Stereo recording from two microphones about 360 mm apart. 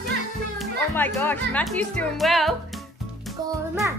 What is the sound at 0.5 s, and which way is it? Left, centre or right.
Speech, centre.